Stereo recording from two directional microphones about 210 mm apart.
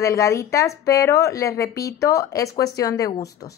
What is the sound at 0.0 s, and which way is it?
Speech, 15° left (ahead or behind).